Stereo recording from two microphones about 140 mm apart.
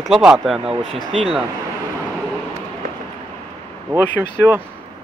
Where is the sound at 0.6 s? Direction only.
40° right (ahead or behind).